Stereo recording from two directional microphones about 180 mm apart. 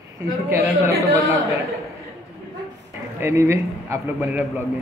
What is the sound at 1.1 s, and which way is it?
Speech, 20° right (ahead or behind).